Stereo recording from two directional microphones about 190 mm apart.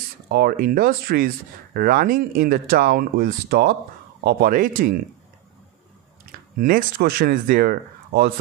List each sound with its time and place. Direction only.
0.3 s speech: 55° right (ahead or behind)
6.6 s speech: 50° right (ahead or behind)